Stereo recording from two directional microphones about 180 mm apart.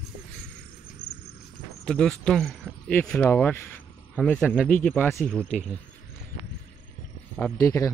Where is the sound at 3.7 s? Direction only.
5° left (ahead or behind).